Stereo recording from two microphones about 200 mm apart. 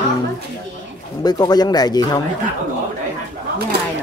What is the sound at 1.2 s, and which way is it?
Speech, 20° left (ahead or behind).